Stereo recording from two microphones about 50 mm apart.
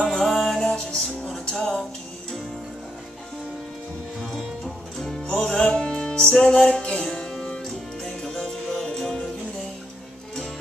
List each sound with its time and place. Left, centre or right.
0.0 s music: centre
4.2 s music: centre